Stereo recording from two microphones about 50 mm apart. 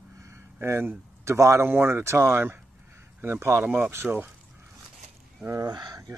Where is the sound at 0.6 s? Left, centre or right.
Right.